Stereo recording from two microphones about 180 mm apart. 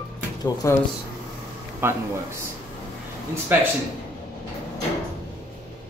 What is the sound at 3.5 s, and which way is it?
Speech, 10° right (ahead or behind).